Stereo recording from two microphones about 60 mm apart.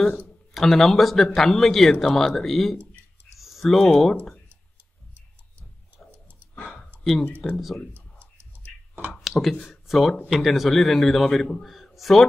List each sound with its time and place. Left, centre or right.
0.6 s speech: centre
6.1 s a sound: right
7.0 s a sound: centre
7.5 s speech: centre
7.9 s clicking: right
9.1 s speech: centre